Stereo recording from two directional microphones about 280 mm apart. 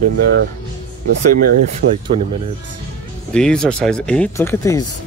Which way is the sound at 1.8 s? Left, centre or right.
Right.